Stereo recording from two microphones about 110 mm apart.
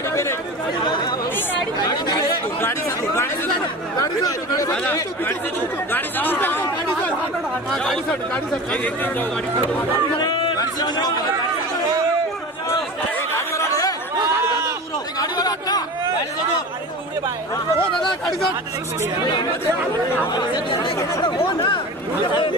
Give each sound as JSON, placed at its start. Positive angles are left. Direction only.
{"t": 0.1, "sound": "chatter", "side_deg": 25}
{"t": 1.8, "sound": "speech", "side_deg": 40}
{"t": 4.2, "sound": "speech", "side_deg": 30}
{"t": 5.9, "sound": "speech", "side_deg": 20}
{"t": 7.7, "sound": "speech", "side_deg": 5}
{"t": 10.2, "sound": "a sound", "side_deg": 40}
{"t": 13.6, "sound": "chatter", "side_deg": 30}
{"t": 15.1, "sound": "chatter", "side_deg": 35}
{"t": 20.3, "sound": "speech", "side_deg": 45}